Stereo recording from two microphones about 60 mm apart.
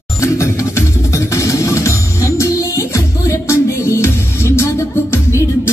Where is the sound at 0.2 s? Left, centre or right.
Left.